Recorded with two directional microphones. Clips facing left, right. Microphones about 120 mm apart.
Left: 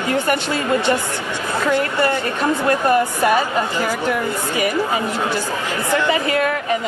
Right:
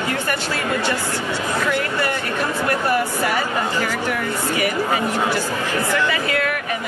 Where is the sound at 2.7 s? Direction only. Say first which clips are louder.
Left 4 dB; 20° left (ahead or behind).